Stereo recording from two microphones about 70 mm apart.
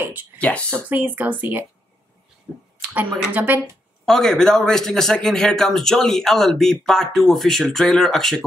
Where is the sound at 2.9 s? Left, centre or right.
Right.